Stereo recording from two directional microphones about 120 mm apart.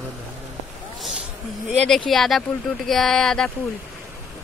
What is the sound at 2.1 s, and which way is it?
Speech, centre (ahead or behind).